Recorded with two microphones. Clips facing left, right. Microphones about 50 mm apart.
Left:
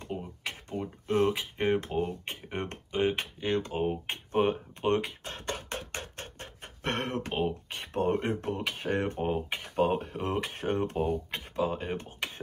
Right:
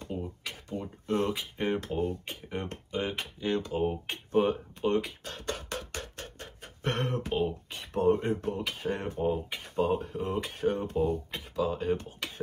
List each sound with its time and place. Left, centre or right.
0.0 s speech: left
11.1 s speech: left